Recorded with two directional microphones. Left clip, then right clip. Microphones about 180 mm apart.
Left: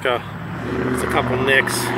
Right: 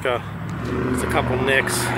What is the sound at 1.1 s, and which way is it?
Speech, 5° right (ahead or behind).